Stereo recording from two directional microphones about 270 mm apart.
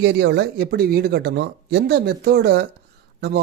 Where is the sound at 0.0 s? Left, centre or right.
Right.